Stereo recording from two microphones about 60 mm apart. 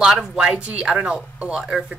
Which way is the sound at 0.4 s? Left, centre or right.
Centre.